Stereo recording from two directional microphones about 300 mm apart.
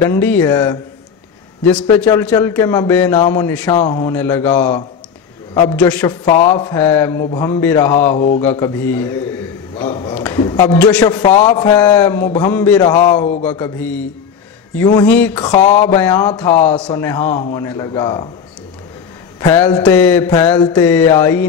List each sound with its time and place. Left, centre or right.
0.0 s a man's voice: centre
3.7 s a man's voice: left
4.0 s a man's voice: centre; by 13.5 s left
13.5 s a sound: centre
15.3 s a man's voice: centre
16.0 s a man's voice: centre
19.4 s a man's voice: centre